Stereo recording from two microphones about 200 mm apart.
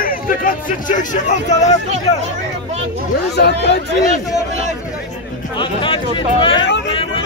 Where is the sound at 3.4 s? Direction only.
55° left (ahead or behind).